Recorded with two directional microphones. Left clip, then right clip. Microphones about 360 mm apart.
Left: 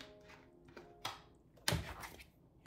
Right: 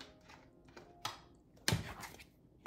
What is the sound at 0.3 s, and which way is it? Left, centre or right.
Music, centre.